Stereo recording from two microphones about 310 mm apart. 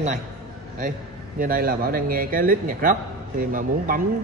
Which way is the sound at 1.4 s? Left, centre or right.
Right.